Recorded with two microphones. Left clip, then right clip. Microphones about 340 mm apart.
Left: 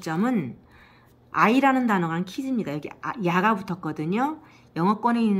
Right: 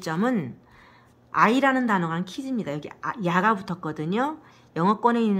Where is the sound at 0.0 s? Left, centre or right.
Centre.